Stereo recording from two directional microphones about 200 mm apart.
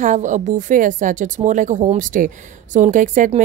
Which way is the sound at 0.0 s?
40° right (ahead or behind).